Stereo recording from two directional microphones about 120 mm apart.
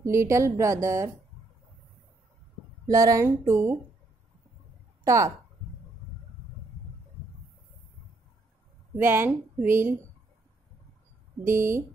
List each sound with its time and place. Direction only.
0.0 s a woman's voice: 25° right (ahead or behind)
2.9 s a woman's voice: 25° right (ahead or behind)
5.0 s speech: 25° right (ahead or behind)
8.9 s a woman's voice: 20° right (ahead or behind)
11.4 s a woman's voice: 20° right (ahead or behind)